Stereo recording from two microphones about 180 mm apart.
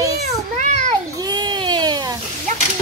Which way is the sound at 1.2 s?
25° right (ahead or behind).